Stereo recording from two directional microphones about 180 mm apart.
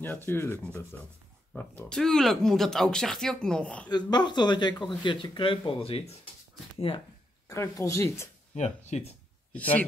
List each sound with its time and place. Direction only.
0.0 s speech: 10° left (ahead or behind)
3.9 s speech: 25° left (ahead or behind)
7.4 s speech: 15° left (ahead or behind)
8.5 s speech: 40° left (ahead or behind)
9.5 s speech: 10° left (ahead or behind)